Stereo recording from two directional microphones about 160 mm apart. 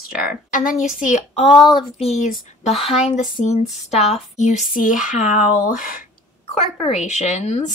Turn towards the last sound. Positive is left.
turn(degrees=45)  # may be behind; listen again after turning